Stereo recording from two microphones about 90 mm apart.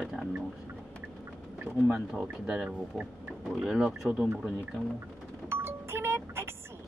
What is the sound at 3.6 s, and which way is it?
Speech, 5° right (ahead or behind).